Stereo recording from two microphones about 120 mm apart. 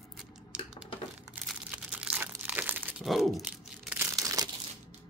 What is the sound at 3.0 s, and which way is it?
Crumpling, centre (ahead or behind).